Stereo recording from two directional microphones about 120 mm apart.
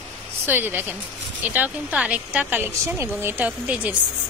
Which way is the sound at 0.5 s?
15° right (ahead or behind).